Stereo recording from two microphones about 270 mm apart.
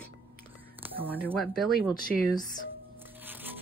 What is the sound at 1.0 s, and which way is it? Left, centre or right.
Speech, centre.